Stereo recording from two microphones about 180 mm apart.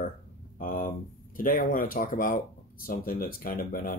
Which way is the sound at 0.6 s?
50° left (ahead or behind).